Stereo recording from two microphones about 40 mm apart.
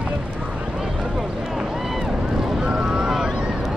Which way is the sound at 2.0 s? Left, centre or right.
Centre.